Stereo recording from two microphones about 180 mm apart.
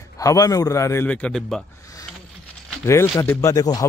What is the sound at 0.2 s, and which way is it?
Speech, 20° left (ahead or behind).